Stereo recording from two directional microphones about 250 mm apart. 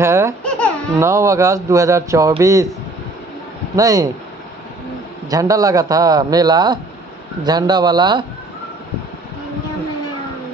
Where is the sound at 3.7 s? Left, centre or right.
Centre.